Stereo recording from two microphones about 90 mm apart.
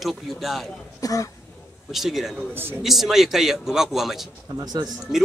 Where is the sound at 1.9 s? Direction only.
5° right (ahead or behind).